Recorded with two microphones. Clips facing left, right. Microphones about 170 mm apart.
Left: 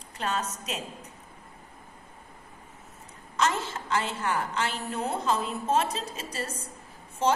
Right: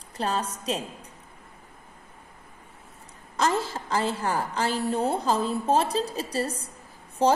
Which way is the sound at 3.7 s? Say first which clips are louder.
Right 3 dB; 35° right (ahead or behind).